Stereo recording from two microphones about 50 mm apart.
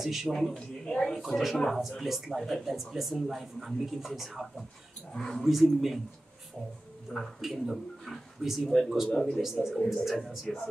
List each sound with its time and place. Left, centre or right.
0.0 s speech: centre
0.5 s speech: centre
1.2 s speech: centre
5.1 s speech: centre
5.4 s speech: centre
7.2 s speech: centre
8.4 s speech: centre
8.6 s speech: centre
9.2 s speech: centre